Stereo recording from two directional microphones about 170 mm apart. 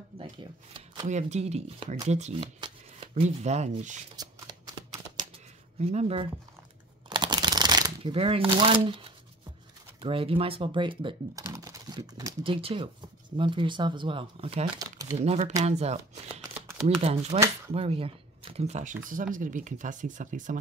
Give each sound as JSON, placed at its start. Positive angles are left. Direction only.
{"t": 0.2, "sound": "speech", "side_deg": -30}
{"t": 1.0, "sound": "speech", "side_deg": -45}
{"t": 2.6, "sound": "shuffling cards", "side_deg": -30}
{"t": 3.4, "sound": "speech", "side_deg": -40}
{"t": 4.2, "sound": "shuffling cards", "side_deg": -25}
{"t": 5.8, "sound": "speech", "side_deg": -40}
{"t": 7.1, "sound": "shuffling cards", "side_deg": -25}
{"t": 9.9, "sound": "speech", "side_deg": -30}
{"t": 11.4, "sound": "typing", "side_deg": -20}
{"t": 12.4, "sound": "speech", "side_deg": -30}
{"t": 14.8, "sound": "a sound", "side_deg": -20}
{"t": 15.1, "sound": "speech", "side_deg": -40}